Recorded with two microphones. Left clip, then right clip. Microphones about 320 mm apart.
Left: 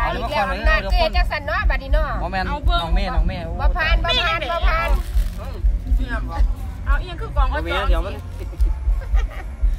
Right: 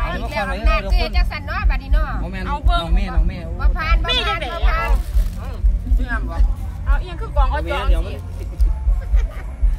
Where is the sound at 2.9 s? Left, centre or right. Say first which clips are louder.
Left 3 dB; centre.